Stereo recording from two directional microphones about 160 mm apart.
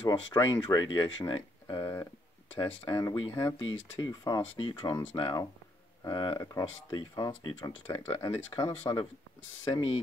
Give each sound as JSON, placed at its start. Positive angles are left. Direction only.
{"t": 0.1, "sound": "speech", "side_deg": 25}